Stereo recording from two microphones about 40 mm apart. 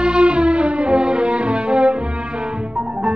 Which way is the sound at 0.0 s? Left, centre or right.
Right.